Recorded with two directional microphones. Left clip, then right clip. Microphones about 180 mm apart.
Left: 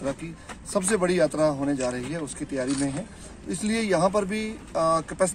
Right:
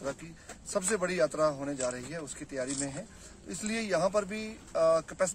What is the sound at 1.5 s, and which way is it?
Speech, 20° right (ahead or behind).